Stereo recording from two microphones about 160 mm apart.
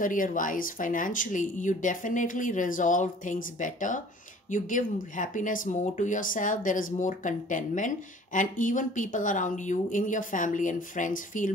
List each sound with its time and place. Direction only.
0.0 s speech: 55° left (ahead or behind)